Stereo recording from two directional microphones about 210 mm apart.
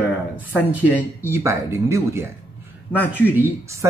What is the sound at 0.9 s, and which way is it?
Speech, 10° right (ahead or behind).